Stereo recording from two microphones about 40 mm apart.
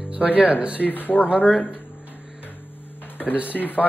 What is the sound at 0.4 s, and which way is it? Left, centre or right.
Speech, right.